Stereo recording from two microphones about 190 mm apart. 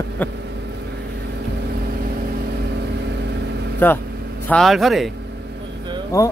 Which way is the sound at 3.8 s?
10° left (ahead or behind).